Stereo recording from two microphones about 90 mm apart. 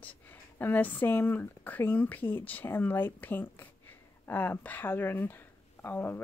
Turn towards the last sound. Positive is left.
turn(degrees=25)  # may be behind; listen again after turning